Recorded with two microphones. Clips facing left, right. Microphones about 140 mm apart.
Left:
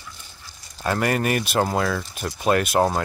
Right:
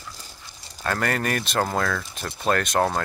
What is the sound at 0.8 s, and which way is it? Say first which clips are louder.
Speech: left 3 dB; 10° left (ahead or behind).